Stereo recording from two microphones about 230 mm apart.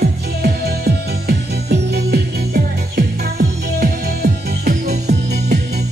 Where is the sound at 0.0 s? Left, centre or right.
Right.